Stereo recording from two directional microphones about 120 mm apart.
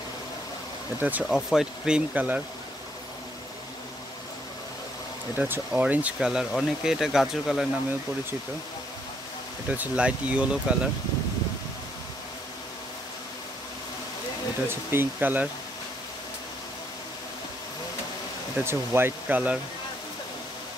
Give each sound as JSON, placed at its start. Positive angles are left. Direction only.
{"t": 1.0, "sound": "speech", "side_deg": -10}
{"t": 5.4, "sound": "speech", "side_deg": -10}
{"t": 9.7, "sound": "speech", "side_deg": -10}
{"t": 14.7, "sound": "speech", "side_deg": -20}
{"t": 18.6, "sound": "speech", "side_deg": -20}